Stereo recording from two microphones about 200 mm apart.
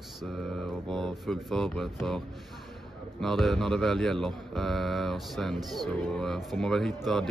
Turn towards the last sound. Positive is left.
turn(degrees=0)  # may be behind; listen again after turning